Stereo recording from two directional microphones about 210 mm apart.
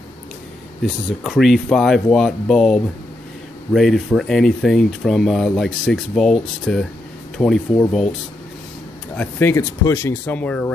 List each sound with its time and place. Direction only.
1.2 s speech: centre (ahead or behind)
9.1 s speech: 10° left (ahead or behind)